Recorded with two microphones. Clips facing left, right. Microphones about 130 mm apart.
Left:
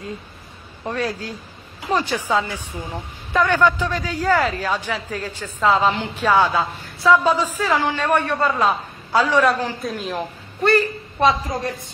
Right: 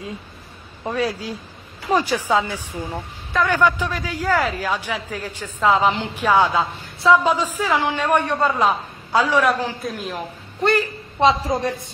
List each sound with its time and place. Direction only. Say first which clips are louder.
0.8 s a woman's voice: right 2 dB; 10° right (ahead or behind)
9.8 s a woman's voice: left 1 dB; centre (ahead or behind)
10.6 s a woman's voice: left 2 dB; 20° right (ahead or behind)